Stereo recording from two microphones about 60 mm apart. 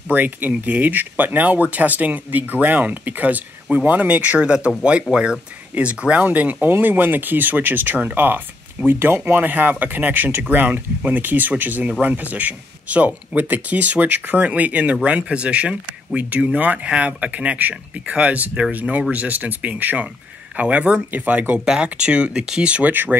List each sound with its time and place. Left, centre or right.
0.1 s speech: right